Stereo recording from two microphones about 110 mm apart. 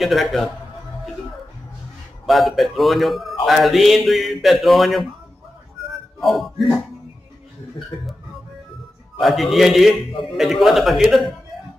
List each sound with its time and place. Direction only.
0.0 s a man's voice: centre (ahead or behind)
2.2 s a man's voice: centre (ahead or behind)
6.1 s a man's voice: centre (ahead or behind)
9.2 s a man's voice: centre (ahead or behind)